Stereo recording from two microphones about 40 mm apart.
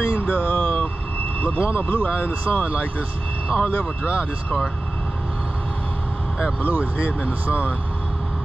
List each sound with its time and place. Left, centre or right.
0.0 s a sound: left
1.6 s speech: left
2.4 s speech: left
7.1 s speech: left